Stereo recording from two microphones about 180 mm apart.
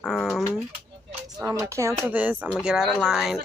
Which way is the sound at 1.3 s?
15° right (ahead or behind).